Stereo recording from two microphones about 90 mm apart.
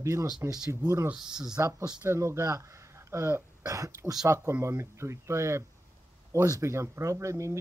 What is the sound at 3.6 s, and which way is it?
Speech, 40° right (ahead or behind).